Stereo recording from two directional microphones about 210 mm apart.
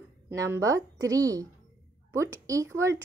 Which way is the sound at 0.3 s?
15° right (ahead or behind).